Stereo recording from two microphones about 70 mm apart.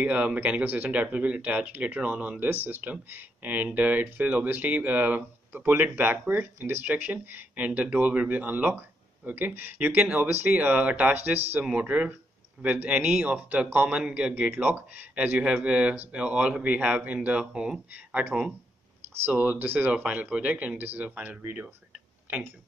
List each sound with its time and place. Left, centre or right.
0.0 s speech: right
14.5 s speech: right
17.5 s speech: centre
19.3 s speech: right
19.9 s speech: centre